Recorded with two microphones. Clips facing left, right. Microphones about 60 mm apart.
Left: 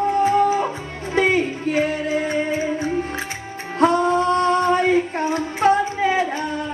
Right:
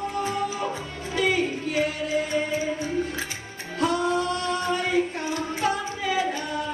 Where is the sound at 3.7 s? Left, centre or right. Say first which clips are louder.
Left 7 dB; left.